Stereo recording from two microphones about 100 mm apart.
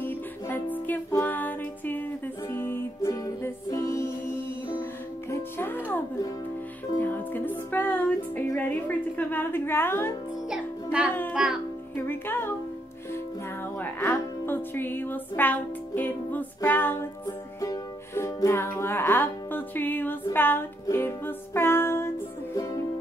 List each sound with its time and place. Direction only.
0.0 s music: 20° left (ahead or behind)
5.3 s music: 25° left (ahead or behind)
7.0 s music: 20° left (ahead or behind)
10.5 s music: 10° right (ahead or behind)
11.3 s a child's voice: 5° right (ahead or behind)
11.9 s music: 20° left (ahead or behind)
13.7 s music: 20° left (ahead or behind)
22.6 s music: 35° left (ahead or behind)